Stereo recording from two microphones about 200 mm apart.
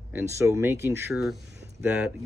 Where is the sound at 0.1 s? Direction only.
15° right (ahead or behind).